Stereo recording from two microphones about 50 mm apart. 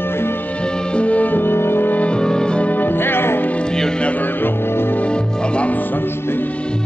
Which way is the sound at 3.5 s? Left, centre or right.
Left.